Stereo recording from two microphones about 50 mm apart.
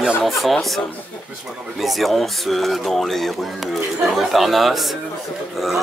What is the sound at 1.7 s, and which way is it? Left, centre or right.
Speech, centre.